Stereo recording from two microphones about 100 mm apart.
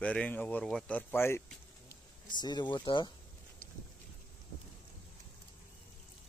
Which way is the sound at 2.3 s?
45° left (ahead or behind).